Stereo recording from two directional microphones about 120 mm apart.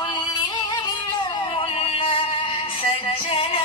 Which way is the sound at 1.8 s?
50° left (ahead or behind).